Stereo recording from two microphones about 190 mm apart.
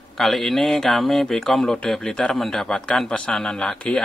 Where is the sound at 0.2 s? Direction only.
Centre (ahead or behind).